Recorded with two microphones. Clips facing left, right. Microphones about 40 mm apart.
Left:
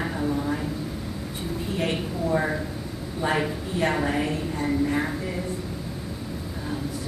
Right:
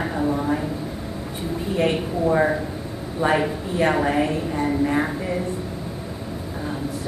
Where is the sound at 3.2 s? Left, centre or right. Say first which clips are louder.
Right 6 dB; right.